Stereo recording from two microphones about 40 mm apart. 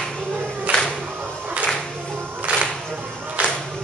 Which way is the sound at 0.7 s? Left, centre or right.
Right.